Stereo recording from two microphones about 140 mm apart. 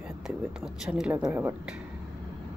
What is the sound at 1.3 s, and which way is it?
Speech, 15° right (ahead or behind).